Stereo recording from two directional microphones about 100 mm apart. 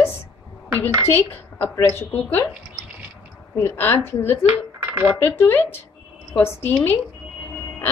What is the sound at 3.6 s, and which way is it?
A woman's voice, 25° left (ahead or behind).